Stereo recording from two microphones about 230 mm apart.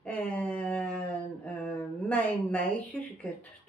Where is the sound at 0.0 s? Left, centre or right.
Centre.